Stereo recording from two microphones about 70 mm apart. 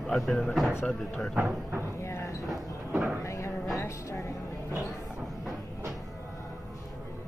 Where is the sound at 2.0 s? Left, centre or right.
Left.